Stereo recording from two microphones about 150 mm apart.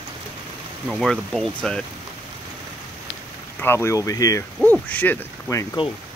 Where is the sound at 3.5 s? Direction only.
15° left (ahead or behind).